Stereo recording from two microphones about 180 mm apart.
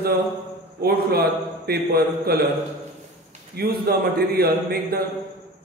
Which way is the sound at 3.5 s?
60° right (ahead or behind).